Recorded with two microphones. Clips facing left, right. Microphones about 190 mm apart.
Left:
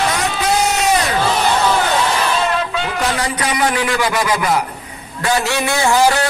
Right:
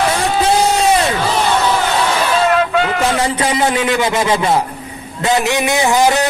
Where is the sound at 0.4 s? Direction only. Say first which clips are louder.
Right 4 dB; 30° right (ahead or behind).